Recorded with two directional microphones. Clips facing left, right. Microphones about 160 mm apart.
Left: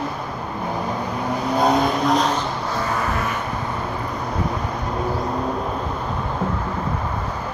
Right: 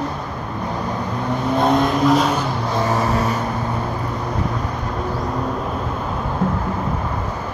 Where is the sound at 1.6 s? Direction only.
Centre (ahead or behind).